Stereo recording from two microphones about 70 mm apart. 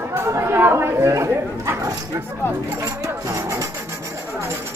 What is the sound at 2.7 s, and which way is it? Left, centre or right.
Rub, right.